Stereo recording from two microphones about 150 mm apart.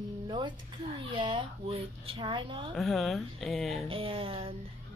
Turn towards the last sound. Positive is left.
turn(degrees=-35)  # may be behind; listen again after turning